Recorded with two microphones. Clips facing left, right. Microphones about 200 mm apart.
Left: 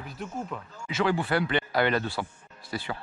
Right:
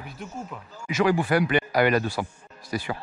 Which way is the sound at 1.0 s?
15° right (ahead or behind).